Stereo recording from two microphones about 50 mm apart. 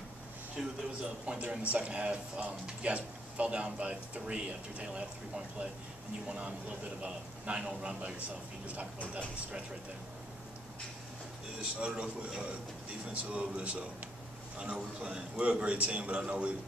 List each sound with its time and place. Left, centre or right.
0.6 s speech: centre
1.2 s speech: centre
11.8 s speech: centre